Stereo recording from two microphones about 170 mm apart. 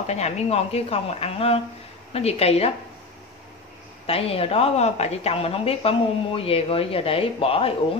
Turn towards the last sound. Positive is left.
turn(degrees=35)  # may be behind; listen again after turning